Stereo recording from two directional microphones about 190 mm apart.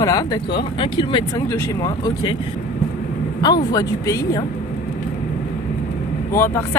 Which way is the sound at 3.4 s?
20° left (ahead or behind).